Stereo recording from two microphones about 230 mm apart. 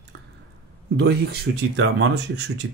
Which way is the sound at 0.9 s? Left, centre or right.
Right.